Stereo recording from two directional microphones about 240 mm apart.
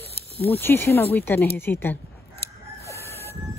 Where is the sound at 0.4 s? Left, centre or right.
Centre.